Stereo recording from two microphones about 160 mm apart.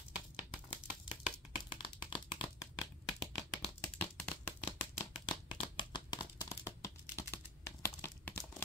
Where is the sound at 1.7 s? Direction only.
30° left (ahead or behind).